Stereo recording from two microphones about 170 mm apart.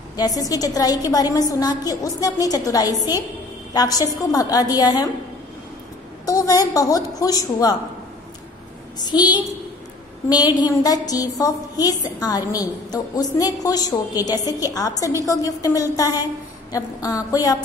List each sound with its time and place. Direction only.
0.1 s a woman's voice: 20° left (ahead or behind)
6.2 s a woman's voice: 20° left (ahead or behind)
8.9 s a woman's voice: 25° left (ahead or behind)